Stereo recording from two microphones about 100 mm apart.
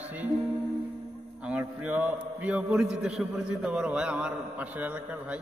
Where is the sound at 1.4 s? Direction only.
10° right (ahead or behind).